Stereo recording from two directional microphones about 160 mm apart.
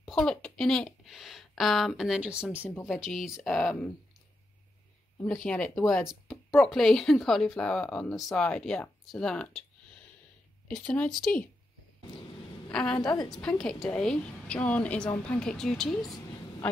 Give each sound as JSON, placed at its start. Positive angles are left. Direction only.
{"t": 0.0, "sound": "speech", "side_deg": 5}
{"t": 5.2, "sound": "speech", "side_deg": 5}
{"t": 10.7, "sound": "speech", "side_deg": 5}
{"t": 12.7, "sound": "speech", "side_deg": 5}
{"t": 13.0, "sound": "a woman's voice", "side_deg": 25}
{"t": 13.3, "sound": "speech", "side_deg": 5}